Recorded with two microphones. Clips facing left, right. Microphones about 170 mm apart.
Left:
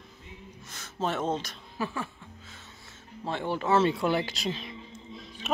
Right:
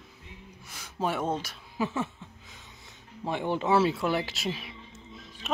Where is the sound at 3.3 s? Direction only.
15° right (ahead or behind).